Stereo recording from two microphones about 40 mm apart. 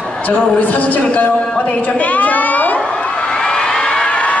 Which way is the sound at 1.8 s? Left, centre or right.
Left.